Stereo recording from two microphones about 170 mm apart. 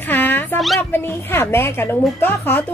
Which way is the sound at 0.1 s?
10° left (ahead or behind).